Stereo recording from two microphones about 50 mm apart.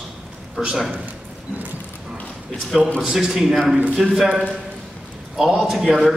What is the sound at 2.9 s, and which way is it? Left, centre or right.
A man's voice, centre.